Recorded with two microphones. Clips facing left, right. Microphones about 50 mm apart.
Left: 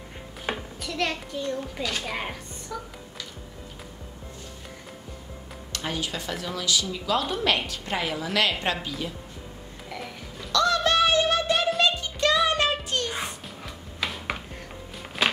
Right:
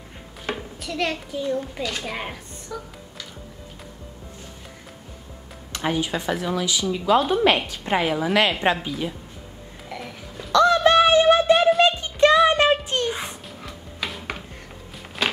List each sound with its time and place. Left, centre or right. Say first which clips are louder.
0.6 s a child's voice: right 4 dB; centre
5.7 s speech: right 7 dB; right
9.8 s music: right 2 dB; centre
10.5 s music: right 7 dB; right
12.4 s a sound: right 6 dB; right
13.6 s music: even; centre
15.2 s a sound: even; centre